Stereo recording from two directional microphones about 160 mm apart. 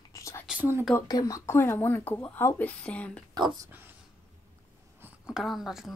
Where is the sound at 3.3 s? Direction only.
25° right (ahead or behind).